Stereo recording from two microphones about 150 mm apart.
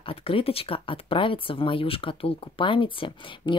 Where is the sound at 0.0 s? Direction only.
40° left (ahead or behind).